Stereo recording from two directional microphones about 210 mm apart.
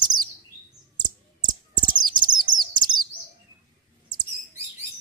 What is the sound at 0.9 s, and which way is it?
Chirp, 20° right (ahead or behind).